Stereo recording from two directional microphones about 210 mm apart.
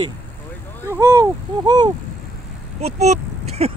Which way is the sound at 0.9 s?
15° right (ahead or behind).